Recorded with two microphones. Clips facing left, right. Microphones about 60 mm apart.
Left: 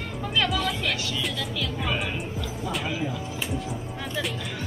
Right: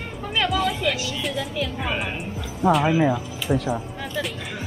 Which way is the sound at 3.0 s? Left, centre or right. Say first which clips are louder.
Right 8 dB; right.